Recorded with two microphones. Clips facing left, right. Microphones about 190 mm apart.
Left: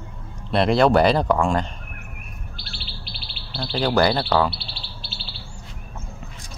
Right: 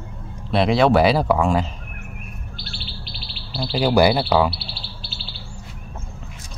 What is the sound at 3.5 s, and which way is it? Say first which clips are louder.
Bird: right 3 dB; 10° right (ahead or behind).